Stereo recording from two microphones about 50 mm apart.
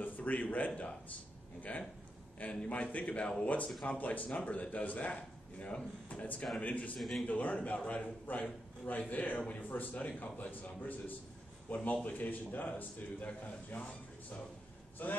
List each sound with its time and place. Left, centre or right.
0.0 s a man's voice: left
7.0 s a man's voice: centre
7.2 s a man's voice: left
15.0 s a man's voice: left